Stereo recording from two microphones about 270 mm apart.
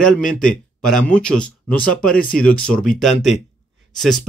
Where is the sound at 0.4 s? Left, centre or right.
Centre.